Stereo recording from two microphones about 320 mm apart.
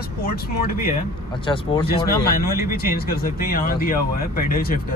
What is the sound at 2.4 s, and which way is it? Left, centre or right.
Speech, left.